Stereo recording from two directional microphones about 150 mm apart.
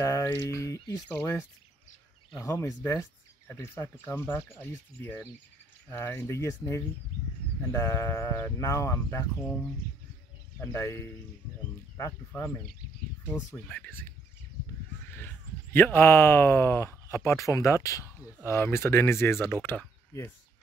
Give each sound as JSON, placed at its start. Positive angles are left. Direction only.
{"t": 0.0, "sound": "speech", "side_deg": 20}
{"t": 2.4, "sound": "speech", "side_deg": 20}
{"t": 10.6, "sound": "speech", "side_deg": 20}
{"t": 12.3, "sound": "speech", "side_deg": 15}
{"t": 13.7, "sound": "speech", "side_deg": 10}